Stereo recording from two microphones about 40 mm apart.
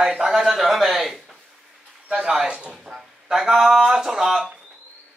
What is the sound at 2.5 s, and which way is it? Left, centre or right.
Speech, right.